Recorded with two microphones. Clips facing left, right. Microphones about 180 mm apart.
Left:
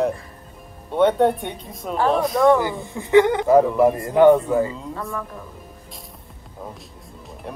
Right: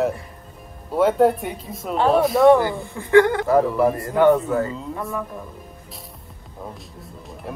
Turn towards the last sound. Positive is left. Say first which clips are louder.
# right 1 dB
turn(degrees=0)  # may be behind; listen again after turning